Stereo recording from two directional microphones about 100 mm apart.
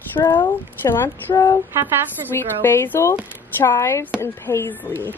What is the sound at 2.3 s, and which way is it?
Speech, 25° left (ahead or behind).